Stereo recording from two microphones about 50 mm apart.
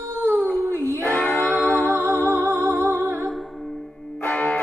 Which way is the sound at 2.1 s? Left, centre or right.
Right.